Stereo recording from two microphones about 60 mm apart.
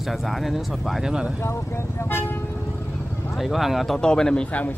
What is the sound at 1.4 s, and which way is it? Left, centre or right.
Speech, left.